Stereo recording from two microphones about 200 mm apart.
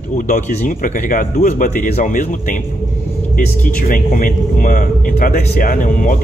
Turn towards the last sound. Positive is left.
turn(degrees=40)  # may be behind; listen again after turning